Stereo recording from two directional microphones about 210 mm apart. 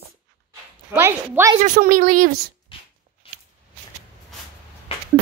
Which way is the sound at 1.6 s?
40° right (ahead or behind).